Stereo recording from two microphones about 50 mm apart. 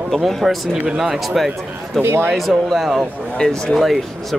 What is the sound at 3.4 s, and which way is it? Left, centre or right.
Speech, centre.